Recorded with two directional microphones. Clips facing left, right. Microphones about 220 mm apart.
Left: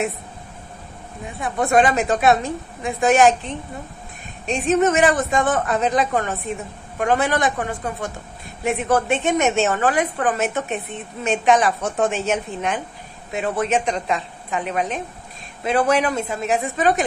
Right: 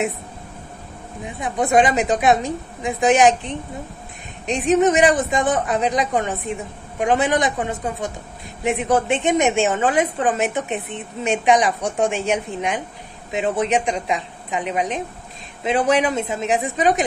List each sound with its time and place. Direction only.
1.4 s a woman's voice: 15° right (ahead or behind)